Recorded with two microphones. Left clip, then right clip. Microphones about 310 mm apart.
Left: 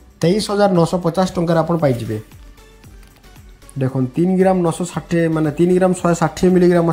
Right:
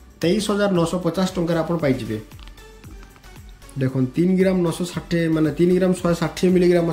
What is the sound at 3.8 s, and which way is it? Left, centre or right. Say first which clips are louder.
Speech: left 3 dB; centre.